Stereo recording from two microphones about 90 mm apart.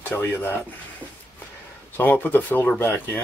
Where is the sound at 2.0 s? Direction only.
20° left (ahead or behind).